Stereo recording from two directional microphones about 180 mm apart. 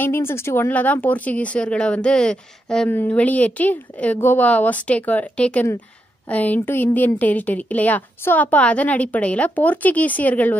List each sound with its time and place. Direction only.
0.0 s speech: 15° left (ahead or behind)